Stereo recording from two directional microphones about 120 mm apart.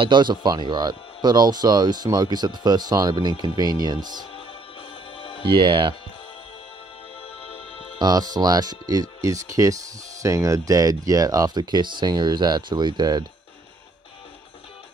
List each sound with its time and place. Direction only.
0.0 s speech: 40° right (ahead or behind)
5.1 s music: 45° left (ahead or behind)
5.4 s speech: 45° right (ahead or behind)
7.4 s music: 50° left (ahead or behind)
8.0 s speech: 35° right (ahead or behind)